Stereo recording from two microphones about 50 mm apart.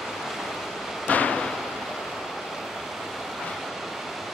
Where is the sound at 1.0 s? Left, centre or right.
Left.